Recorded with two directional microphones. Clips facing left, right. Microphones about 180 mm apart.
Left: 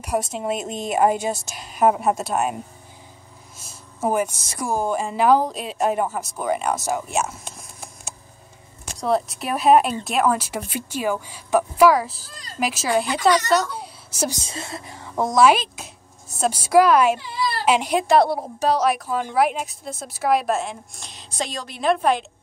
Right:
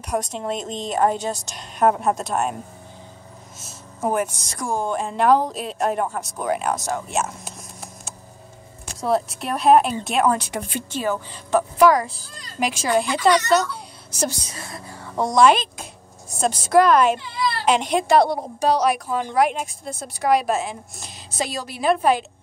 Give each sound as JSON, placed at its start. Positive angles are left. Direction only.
{"t": 0.0, "sound": "a woman's voice", "side_deg": 5}
{"t": 4.0, "sound": "a woman's voice", "side_deg": 0}
{"t": 14.3, "sound": "a woman's voice", "side_deg": 25}
{"t": 15.1, "sound": "a woman's voice", "side_deg": 5}